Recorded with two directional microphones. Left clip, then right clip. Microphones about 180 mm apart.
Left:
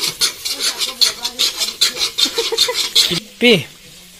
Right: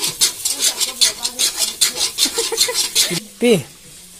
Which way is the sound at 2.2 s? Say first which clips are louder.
Left 3 dB; centre (ahead or behind).